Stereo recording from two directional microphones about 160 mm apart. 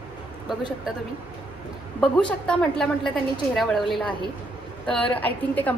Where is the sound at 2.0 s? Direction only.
5° left (ahead or behind).